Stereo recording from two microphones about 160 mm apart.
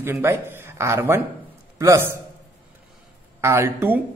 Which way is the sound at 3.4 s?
15° right (ahead or behind).